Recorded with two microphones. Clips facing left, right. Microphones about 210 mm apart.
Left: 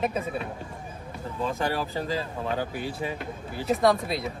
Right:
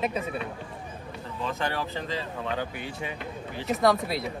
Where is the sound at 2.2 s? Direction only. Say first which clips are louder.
Left 2 dB; 40° left (ahead or behind).